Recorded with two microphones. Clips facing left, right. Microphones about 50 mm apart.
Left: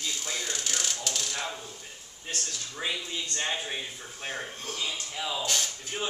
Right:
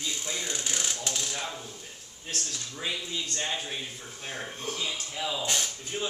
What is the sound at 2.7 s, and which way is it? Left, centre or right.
Speech, centre.